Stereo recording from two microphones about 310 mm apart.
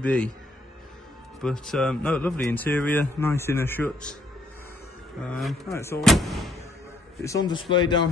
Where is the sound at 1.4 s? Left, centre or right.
Centre.